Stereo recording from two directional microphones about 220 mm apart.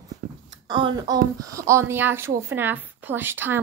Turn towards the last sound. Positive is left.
turn(degrees=-10)  # may be behind; listen again after turning